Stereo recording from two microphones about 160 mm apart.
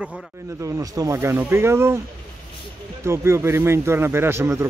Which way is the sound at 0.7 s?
20° right (ahead or behind).